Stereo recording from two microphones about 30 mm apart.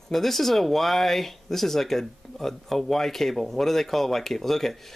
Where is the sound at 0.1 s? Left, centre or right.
Centre.